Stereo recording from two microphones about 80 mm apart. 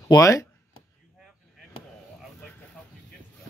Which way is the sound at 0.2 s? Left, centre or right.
Left.